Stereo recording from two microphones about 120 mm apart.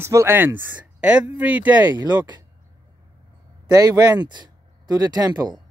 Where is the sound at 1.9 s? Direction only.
35° right (ahead or behind).